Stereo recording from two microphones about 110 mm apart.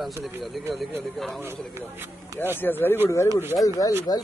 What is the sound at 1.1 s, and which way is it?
Speech, centre (ahead or behind).